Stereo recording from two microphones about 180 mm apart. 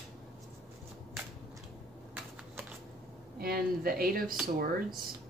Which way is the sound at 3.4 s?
55° right (ahead or behind).